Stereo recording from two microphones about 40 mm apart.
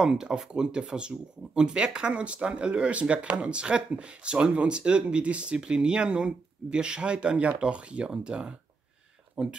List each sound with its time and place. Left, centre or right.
0.0 s speech: centre